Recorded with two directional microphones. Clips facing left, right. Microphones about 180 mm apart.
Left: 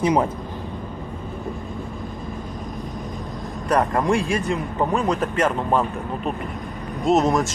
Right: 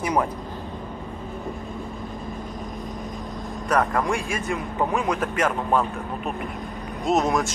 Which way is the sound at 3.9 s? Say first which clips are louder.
Left 4 dB; centre (ahead or behind).